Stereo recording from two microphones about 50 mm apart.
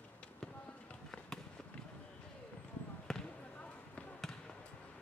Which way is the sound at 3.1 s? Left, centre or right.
Centre.